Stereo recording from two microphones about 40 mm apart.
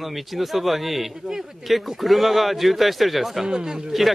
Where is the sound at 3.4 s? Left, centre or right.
Centre.